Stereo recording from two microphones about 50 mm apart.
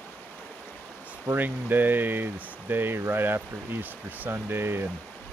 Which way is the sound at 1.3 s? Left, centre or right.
Right.